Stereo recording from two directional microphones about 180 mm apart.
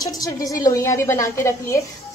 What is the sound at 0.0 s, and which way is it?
A woman's voice, 20° left (ahead or behind).